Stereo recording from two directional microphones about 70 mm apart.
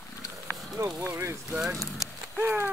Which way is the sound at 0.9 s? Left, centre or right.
Right.